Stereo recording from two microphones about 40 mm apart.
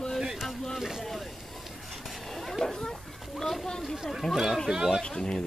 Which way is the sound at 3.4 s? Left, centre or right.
Centre.